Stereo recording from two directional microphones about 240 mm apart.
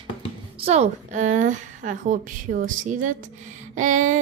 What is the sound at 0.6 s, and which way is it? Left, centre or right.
A woman's voice, right.